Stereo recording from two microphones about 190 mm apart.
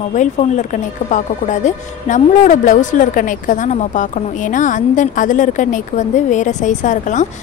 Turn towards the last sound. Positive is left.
turn(degrees=40)  # may be behind; listen again after turning